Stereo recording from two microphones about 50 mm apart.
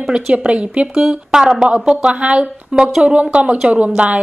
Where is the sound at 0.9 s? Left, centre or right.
Centre.